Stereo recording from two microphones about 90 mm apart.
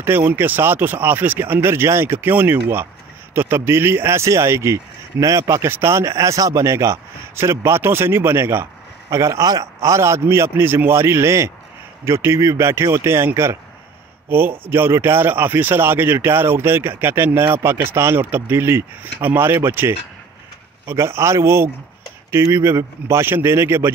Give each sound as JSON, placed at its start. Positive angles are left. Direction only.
{"t": 0.0, "sound": "speech", "side_deg": -20}
{"t": 14.7, "sound": "speech", "side_deg": -25}
{"t": 20.9, "sound": "speech", "side_deg": -30}